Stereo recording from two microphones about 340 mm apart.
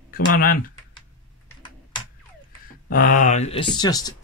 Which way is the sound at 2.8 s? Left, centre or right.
Left.